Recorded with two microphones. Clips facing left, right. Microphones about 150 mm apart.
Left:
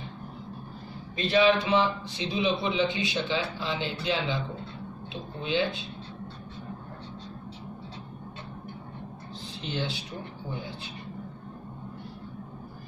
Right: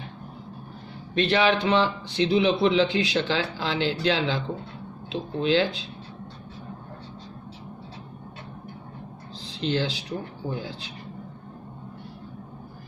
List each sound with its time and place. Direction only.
1.1 s speech: 75° right (ahead or behind)
9.6 s speech: 90° right